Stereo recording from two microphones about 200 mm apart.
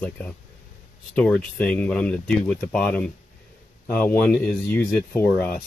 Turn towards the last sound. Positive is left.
turn(degrees=10)  # may be behind; listen again after turning